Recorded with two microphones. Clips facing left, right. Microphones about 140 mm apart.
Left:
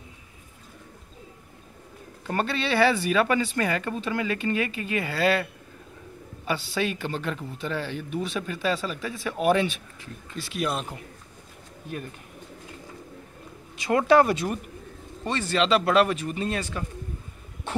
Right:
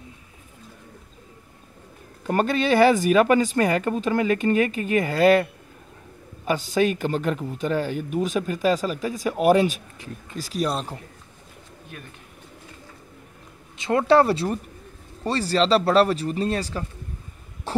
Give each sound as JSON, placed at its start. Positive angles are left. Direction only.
{"t": 2.2, "sound": "speech", "side_deg": -45}
{"t": 13.7, "sound": "speech", "side_deg": -25}
{"t": 17.7, "sound": "cough", "side_deg": -35}